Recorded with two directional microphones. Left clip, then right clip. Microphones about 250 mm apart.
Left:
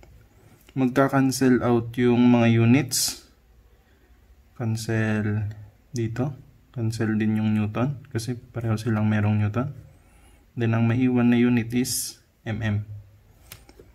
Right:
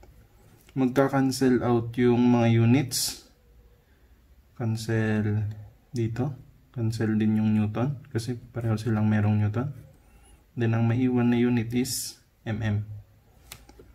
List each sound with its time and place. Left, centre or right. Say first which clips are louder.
0.7 s speech: left 2 dB; centre
4.6 s speech: left 2 dB; centre